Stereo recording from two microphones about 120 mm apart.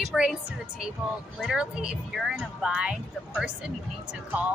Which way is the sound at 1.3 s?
5° right (ahead or behind).